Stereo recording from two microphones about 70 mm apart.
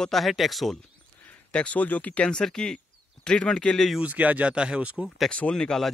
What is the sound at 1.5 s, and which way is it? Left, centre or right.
Speech, centre.